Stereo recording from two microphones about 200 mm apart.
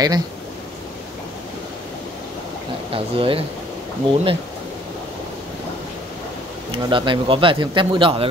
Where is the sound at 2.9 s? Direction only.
25° right (ahead or behind).